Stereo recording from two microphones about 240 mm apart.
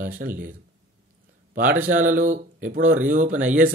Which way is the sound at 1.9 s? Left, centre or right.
Right.